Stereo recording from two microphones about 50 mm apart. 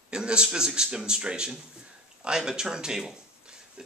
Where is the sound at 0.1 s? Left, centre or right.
Centre.